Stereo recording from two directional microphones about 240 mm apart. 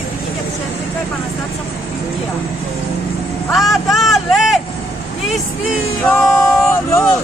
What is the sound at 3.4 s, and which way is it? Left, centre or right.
A man's voice, centre.